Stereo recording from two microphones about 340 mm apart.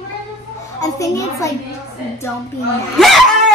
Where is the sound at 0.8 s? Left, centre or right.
Centre.